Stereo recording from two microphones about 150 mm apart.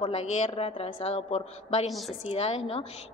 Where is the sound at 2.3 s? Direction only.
45° left (ahead or behind).